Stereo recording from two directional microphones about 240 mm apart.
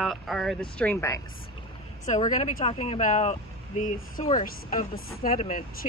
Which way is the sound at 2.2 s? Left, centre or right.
Left.